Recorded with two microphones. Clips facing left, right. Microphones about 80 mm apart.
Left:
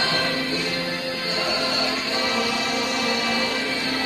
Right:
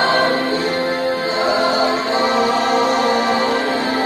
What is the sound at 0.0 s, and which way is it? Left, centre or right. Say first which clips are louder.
Music: right 9 dB; right.